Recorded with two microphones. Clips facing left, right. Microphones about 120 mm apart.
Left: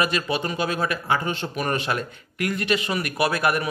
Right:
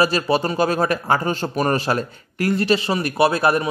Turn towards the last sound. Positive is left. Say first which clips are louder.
# right 5 dB
turn(degrees=-30)  # may be behind; listen again after turning